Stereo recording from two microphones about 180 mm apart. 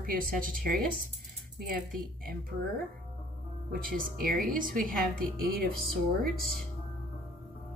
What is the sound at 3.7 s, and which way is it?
A woman's voice, 50° right (ahead or behind).